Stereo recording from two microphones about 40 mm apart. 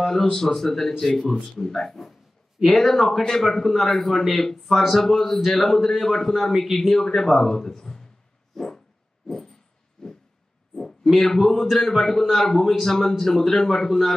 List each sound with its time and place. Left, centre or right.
0.0 s a man's voice: centre
4.6 s a man's voice: centre
8.5 s dog: centre
10.0 s vehicle: centre
11.1 s a man's voice: centre
11.5 s a man's voice: centre
12.4 s a man's voice: centre